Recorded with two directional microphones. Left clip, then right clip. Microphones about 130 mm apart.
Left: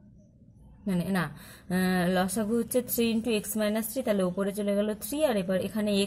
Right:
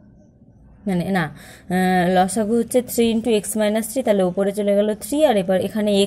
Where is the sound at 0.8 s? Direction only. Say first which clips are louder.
Right 9 dB; 30° right (ahead or behind).